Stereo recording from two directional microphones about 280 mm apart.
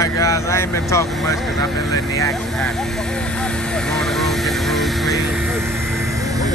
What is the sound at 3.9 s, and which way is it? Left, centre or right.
Vehicle, centre.